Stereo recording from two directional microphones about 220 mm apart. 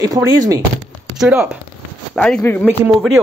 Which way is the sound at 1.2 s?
5° right (ahead or behind).